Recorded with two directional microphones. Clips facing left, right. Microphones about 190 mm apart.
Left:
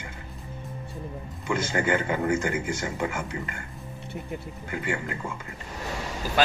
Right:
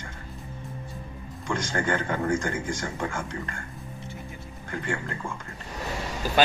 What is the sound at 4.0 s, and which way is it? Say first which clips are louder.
Music: left 8 dB; 65° left (ahead or behind).